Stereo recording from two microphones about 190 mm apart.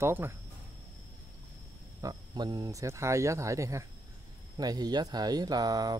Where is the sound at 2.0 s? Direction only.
20° right (ahead or behind).